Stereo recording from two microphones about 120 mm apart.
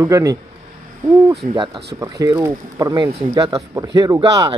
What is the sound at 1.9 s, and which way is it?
Speech, 25° right (ahead or behind).